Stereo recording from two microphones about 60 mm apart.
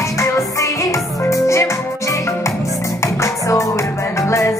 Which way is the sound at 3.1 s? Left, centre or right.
Left.